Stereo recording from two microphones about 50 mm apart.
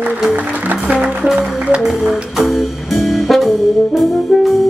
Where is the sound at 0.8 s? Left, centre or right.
Right.